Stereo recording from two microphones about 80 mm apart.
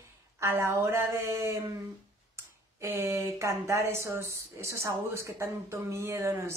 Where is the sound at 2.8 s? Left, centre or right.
Right.